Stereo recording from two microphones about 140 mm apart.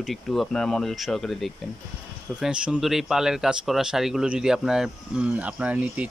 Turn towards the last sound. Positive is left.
turn(degrees=-10)  # may be behind; listen again after turning